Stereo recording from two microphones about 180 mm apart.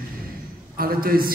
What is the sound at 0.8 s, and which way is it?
Speech, 55° right (ahead or behind).